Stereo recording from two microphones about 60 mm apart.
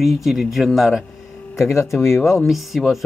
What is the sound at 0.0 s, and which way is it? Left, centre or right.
Speech, centre.